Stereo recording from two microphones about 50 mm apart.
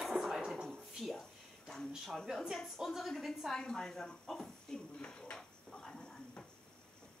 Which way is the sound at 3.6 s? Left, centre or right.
Centre.